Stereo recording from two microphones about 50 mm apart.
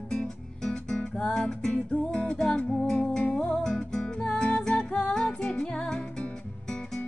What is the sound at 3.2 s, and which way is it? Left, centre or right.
Music, left.